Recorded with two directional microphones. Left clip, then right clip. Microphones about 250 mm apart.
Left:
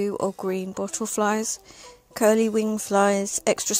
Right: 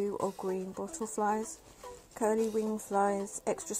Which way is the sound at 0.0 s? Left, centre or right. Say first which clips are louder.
Left 8 dB; left.